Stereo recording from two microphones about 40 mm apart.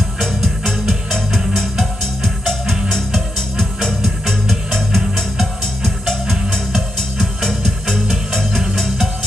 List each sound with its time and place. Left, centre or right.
0.2 s music: centre
6.5 s music: centre